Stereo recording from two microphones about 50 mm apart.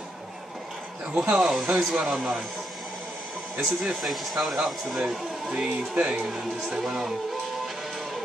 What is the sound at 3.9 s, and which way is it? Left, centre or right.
Speech, centre.